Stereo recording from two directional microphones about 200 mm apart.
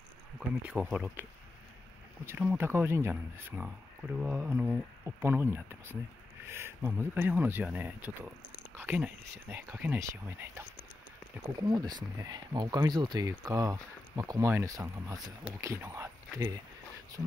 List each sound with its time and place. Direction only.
0.4 s speech: 5° right (ahead or behind)
2.2 s speech: 10° right (ahead or behind)
11.6 s speech: 20° right (ahead or behind)